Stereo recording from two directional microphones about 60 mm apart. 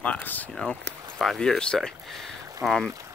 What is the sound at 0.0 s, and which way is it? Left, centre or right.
Speech, left.